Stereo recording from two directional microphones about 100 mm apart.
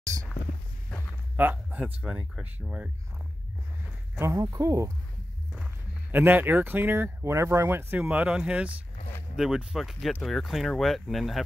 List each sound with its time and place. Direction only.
1.3 s speech: 20° right (ahead or behind)
4.2 s speech: 30° right (ahead or behind)
6.1 s speech: 20° right (ahead or behind); by 11.4 s centre (ahead or behind)